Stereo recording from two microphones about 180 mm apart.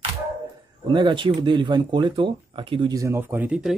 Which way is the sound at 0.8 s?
25° right (ahead or behind).